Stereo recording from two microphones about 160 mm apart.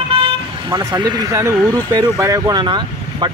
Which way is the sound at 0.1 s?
35° right (ahead or behind).